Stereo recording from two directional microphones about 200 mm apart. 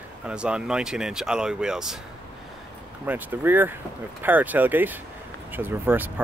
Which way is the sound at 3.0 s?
10° right (ahead or behind).